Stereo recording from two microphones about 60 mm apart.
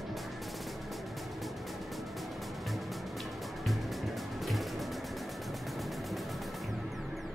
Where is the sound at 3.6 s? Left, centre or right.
Centre.